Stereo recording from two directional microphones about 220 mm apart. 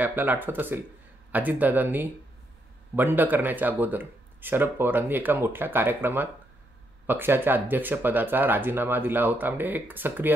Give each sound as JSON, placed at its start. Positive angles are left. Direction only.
{"t": 0.0, "sound": "speech", "side_deg": -10}